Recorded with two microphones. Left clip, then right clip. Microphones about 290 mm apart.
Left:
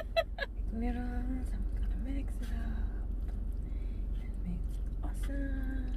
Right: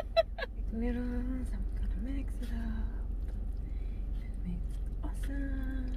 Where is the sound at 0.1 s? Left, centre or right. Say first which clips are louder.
Right 3 dB; centre.